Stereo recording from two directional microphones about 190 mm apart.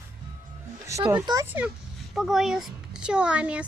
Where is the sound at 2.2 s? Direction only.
Centre (ahead or behind).